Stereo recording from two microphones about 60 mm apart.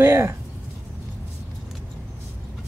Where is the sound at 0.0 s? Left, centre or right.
Right.